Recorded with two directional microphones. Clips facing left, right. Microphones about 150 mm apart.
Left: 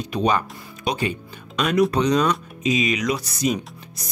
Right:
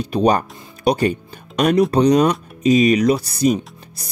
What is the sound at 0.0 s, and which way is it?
Speech, 35° right (ahead or behind).